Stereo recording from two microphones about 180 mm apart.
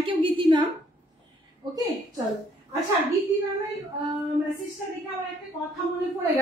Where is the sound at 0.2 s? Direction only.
25° right (ahead or behind).